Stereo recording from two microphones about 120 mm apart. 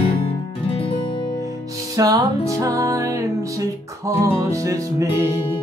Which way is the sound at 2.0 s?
30° right (ahead or behind).